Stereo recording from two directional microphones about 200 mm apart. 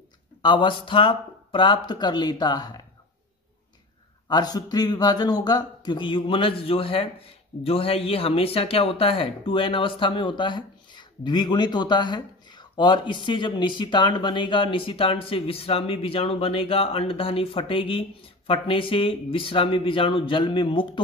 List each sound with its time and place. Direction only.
0.4 s speech: 25° left (ahead or behind)
4.3 s speech: 20° left (ahead or behind)